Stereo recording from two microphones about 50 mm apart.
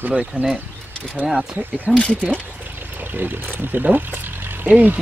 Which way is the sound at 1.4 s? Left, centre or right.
Right.